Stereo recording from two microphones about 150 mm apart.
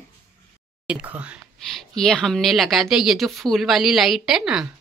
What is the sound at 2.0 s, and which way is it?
A woman's voice, 5° left (ahead or behind).